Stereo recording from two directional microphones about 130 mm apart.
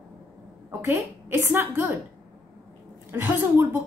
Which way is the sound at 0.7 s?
20° right (ahead or behind).